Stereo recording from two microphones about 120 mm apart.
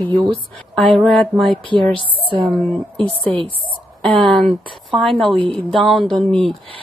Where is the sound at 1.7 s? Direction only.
50° right (ahead or behind).